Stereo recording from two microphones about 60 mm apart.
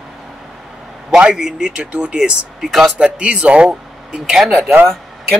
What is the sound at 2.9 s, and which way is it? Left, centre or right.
Speech, centre.